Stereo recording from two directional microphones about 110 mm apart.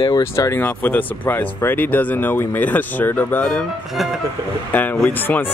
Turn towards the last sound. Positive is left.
turn(degrees=20)  # may be behind; listen again after turning